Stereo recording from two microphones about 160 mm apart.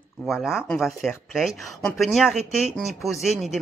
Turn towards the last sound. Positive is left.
turn(degrees=0)  # may be behind; listen again after turning